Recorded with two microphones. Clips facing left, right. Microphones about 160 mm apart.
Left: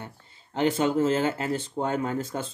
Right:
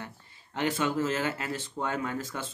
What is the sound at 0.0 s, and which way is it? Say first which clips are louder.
Speech: left 1 dB; 30° left (ahead or behind).